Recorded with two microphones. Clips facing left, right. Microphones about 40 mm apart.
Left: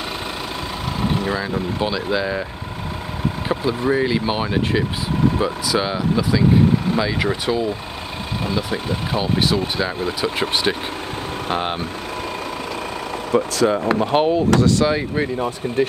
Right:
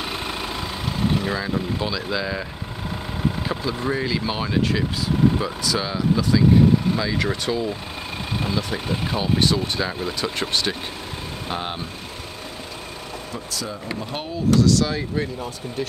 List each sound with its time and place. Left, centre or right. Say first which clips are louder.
1.1 s speech: left 2 dB; centre
1.8 s speech: left 4 dB; left
3.8 s speech: left 5 dB; left
13.3 s speech: left 16 dB; left
14.6 s speech: left 2 dB; left
15.3 s speech: left 8 dB; left